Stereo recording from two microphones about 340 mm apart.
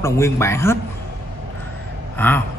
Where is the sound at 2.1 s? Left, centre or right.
Centre.